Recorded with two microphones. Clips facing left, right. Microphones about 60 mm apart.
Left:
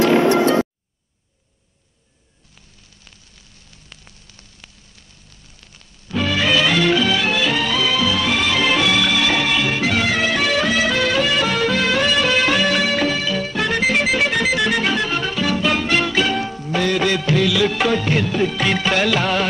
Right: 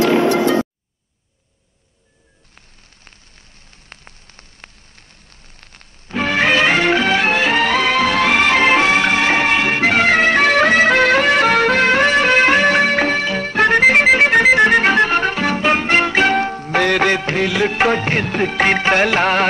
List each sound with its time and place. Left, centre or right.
3.9 s rain on surface: right
5.6 s music: right
16.3 s music of bollywood: right